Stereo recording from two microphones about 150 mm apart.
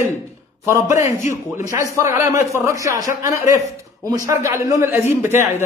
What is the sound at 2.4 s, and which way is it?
A man's voice, 20° right (ahead or behind).